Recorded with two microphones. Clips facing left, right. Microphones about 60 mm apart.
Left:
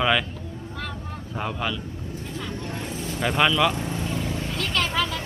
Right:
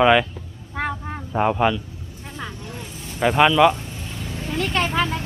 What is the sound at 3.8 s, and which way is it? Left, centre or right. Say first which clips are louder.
Vehicle: left 6 dB; left.